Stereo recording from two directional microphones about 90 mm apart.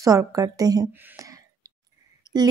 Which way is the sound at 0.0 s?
40° right (ahead or behind).